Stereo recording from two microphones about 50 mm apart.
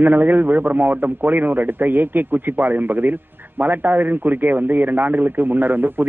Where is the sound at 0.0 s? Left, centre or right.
Right.